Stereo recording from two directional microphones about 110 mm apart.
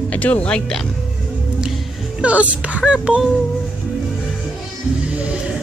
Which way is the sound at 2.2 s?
10° right (ahead or behind).